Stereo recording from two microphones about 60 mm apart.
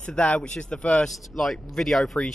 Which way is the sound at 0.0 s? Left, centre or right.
Centre.